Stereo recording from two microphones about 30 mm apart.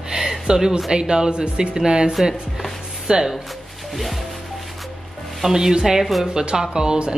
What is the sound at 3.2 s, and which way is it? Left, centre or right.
Music, centre.